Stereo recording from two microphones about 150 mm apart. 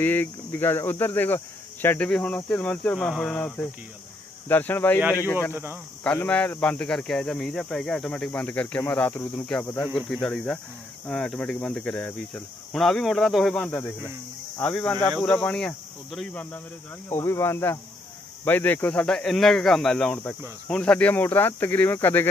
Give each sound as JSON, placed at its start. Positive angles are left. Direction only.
{"t": 0.0, "sound": "speech", "side_deg": 15}
{"t": 5.5, "sound": "speech", "side_deg": -15}
{"t": 6.0, "sound": "speech", "side_deg": 10}
{"t": 13.7, "sound": "speech", "side_deg": 15}
{"t": 17.1, "sound": "speech", "side_deg": 15}